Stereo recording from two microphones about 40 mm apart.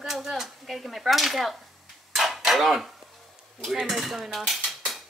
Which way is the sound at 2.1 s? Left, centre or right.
Centre.